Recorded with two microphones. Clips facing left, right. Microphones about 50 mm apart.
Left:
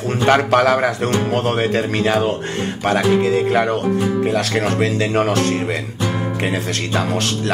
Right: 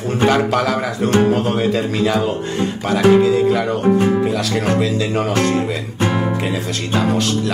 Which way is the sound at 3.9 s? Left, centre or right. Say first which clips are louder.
Right 4 dB; right.